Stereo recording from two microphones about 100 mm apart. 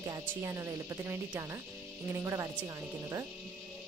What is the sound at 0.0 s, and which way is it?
Speech, 35° right (ahead or behind).